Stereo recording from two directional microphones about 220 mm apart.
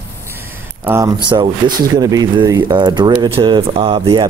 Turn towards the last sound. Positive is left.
turn(degrees=-20)  # may be behind; listen again after turning